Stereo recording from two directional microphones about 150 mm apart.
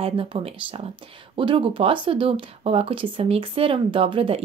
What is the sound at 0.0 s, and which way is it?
Speech, 40° right (ahead or behind).